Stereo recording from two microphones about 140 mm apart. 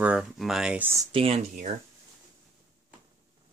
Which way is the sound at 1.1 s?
45° right (ahead or behind).